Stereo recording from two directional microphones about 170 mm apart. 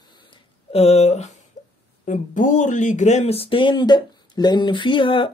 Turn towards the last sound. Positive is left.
turn(degrees=30)  # may be behind; listen again after turning